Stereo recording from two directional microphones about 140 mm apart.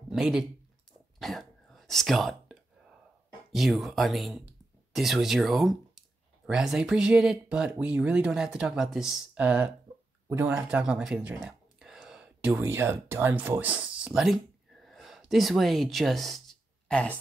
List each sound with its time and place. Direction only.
0.1 s speech: 5° right (ahead or behind)
1.2 s whispering: centre (ahead or behind)
3.5 s speech: centre (ahead or behind); by 10.6 s 20° right (ahead or behind)
10.7 s speech: 5° right (ahead or behind)